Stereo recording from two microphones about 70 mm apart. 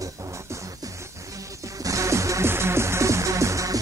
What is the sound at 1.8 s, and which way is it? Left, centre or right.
Music, right.